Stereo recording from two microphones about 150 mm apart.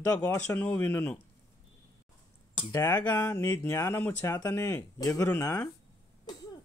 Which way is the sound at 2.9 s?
10° left (ahead or behind).